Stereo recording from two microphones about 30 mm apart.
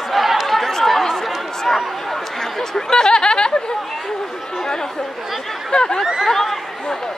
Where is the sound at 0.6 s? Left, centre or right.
Centre.